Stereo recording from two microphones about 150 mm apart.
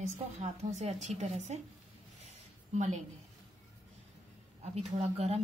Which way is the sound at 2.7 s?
50° right (ahead or behind).